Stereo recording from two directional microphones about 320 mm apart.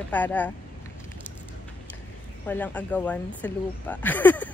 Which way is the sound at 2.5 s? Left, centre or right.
Centre.